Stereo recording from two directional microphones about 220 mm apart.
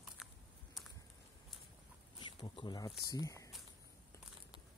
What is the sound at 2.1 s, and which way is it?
Speech, 20° left (ahead or behind).